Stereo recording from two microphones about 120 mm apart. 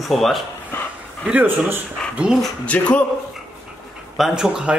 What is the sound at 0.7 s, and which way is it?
Dog, 20° left (ahead or behind).